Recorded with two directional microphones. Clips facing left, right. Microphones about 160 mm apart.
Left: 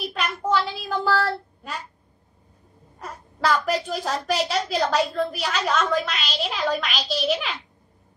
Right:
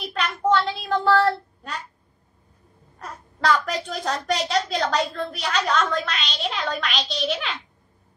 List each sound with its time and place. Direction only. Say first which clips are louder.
0.0 s child singing: right 2 dB; centre (ahead or behind)
3.0 s a woman's voice: left 1 dB; centre (ahead or behind)